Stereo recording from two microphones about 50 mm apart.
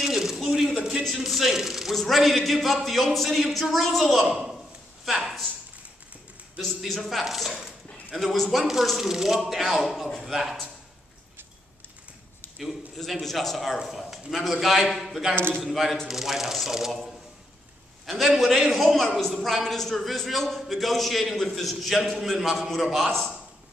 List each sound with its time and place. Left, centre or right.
0.0 s a sound: centre
1.0 s a man's voice: centre
6.6 s a man's voice: centre
7.5 s dog: centre
8.3 s a man's voice: centre
12.5 s a man's voice: centre
15.3 s a man's voice: right
15.6 s a man's voice: centre
18.0 s a man's voice: centre